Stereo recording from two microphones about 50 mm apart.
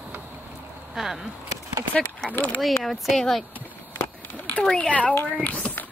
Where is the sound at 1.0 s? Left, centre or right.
Centre.